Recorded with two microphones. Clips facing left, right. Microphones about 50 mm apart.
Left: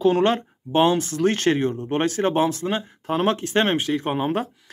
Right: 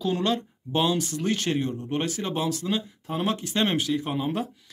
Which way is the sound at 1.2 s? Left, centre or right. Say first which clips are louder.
Left 6 dB; left.